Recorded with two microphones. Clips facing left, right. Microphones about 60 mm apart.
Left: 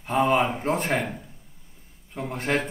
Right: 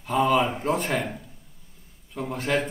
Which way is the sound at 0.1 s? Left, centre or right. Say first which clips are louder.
Even; left.